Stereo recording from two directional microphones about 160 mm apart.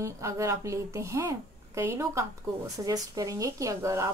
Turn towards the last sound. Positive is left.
turn(degrees=-20)  # may be behind; listen again after turning